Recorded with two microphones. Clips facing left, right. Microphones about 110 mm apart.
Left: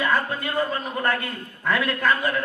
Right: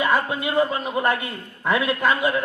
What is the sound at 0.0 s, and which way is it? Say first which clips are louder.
A man's voice: right 2 dB; 15° right (ahead or behind).